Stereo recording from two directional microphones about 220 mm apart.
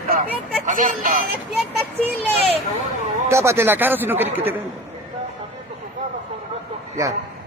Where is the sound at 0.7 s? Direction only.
35° right (ahead or behind).